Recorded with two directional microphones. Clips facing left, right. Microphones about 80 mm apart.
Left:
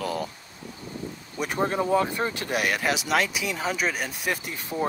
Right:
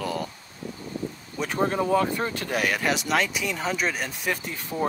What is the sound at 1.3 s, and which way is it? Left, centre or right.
Speech, centre.